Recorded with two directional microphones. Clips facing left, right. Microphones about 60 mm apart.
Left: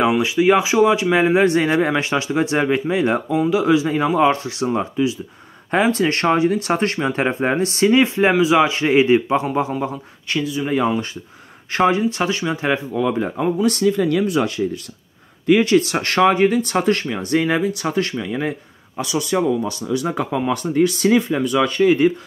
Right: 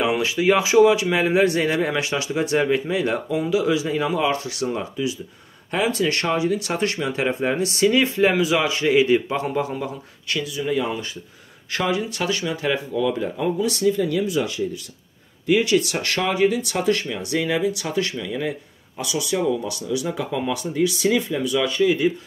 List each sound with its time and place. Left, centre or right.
0.0 s speech: centre; by 13.5 s left
13.6 s speech: left